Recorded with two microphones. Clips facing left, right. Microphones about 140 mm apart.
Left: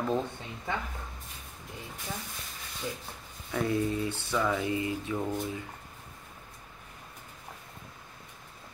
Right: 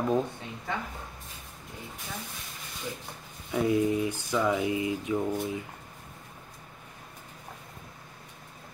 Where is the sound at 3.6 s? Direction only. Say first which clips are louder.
Right 4 dB; 15° right (ahead or behind).